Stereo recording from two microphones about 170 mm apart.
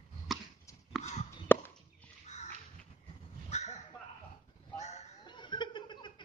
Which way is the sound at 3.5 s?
40° left (ahead or behind).